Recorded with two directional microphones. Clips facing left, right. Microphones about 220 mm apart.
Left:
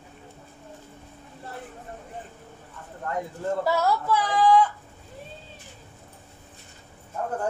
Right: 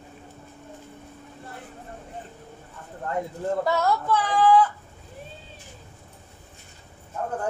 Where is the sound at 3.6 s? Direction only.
5° left (ahead or behind).